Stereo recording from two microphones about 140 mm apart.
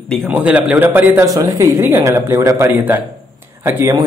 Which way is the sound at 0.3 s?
10° right (ahead or behind).